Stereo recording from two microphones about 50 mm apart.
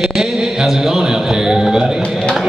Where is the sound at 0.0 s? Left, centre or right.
Centre.